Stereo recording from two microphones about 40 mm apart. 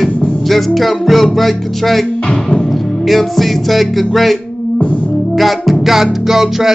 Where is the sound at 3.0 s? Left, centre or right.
Centre.